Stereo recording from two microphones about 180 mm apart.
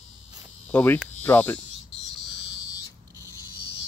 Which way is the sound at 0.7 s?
10° left (ahead or behind).